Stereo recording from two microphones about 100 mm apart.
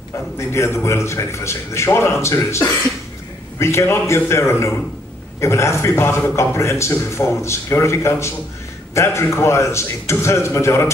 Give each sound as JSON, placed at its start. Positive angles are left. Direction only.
{"t": 0.4, "sound": "a man's voice", "side_deg": 25}